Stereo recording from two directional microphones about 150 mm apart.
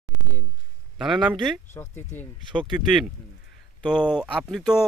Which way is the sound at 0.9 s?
5° right (ahead or behind).